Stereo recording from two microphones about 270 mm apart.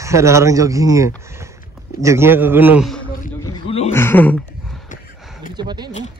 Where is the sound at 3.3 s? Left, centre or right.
Centre.